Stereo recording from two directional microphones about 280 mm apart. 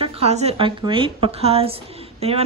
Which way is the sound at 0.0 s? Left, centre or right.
Right.